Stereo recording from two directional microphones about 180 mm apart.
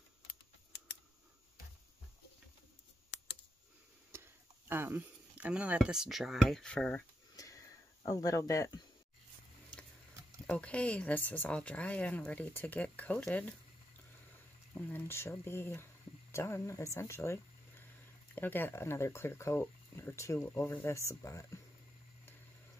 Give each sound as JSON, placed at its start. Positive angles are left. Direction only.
{"t": 4.1, "sound": "speech", "side_deg": -15}
{"t": 7.3, "sound": "a sound", "side_deg": 20}
{"t": 9.7, "sound": "tick-tock", "side_deg": 5}
{"t": 10.4, "sound": "speech", "side_deg": 5}
{"t": 14.7, "sound": "speech", "side_deg": 10}